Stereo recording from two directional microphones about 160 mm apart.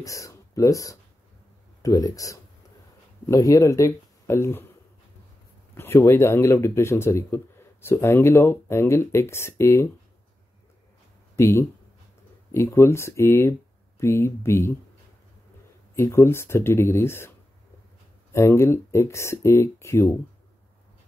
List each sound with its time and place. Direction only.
0.0 s speech: 20° left (ahead or behind)
5.8 s speech: 15° left (ahead or behind)
11.3 s speech: 15° left (ahead or behind)
15.9 s speech: 15° left (ahead or behind)
18.3 s speech: 15° left (ahead or behind)